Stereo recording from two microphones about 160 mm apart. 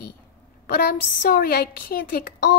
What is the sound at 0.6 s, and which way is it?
A woman's voice, 75° left (ahead or behind).